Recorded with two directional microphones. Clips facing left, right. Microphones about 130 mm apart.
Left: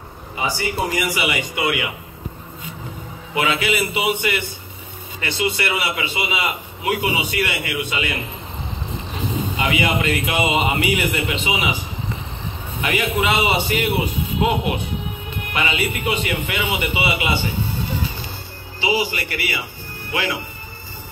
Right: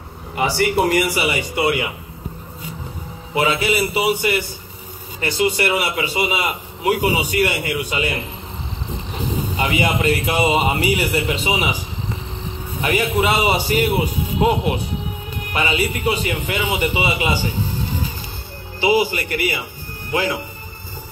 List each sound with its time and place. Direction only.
0.4 s speech: 65° right (ahead or behind)
1.0 s a man's voice: 35° right (ahead or behind)
3.3 s a man's voice: 35° right (ahead or behind)
5.6 s a man's voice: 40° right (ahead or behind)
9.6 s a man's voice: 40° right (ahead or behind)
12.8 s a man's voice: 40° right (ahead or behind)
18.8 s a man's voice: 50° right (ahead or behind)